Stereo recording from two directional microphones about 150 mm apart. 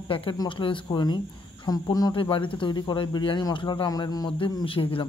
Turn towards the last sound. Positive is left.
turn(degrees=35)  # may be behind; listen again after turning